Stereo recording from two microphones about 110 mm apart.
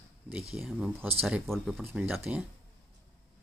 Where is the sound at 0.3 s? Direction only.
5° right (ahead or behind).